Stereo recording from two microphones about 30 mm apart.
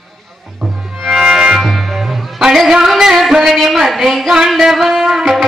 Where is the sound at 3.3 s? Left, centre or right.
Centre.